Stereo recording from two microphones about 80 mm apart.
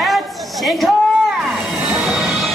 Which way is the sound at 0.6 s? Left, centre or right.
Centre.